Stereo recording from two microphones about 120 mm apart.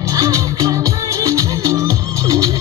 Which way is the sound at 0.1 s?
25° right (ahead or behind).